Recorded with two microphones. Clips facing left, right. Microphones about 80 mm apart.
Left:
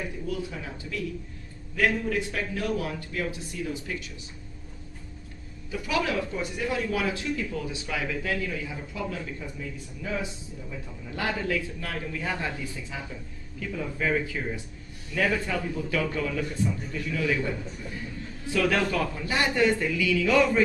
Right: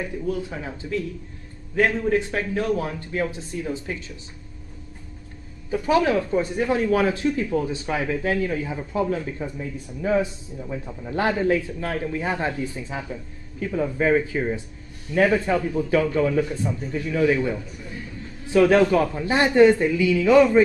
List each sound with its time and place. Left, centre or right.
0.5 s speech: right
5.7 s a man's voice: right